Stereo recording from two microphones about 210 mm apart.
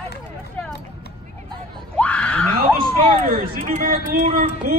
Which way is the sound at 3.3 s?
40° right (ahead or behind).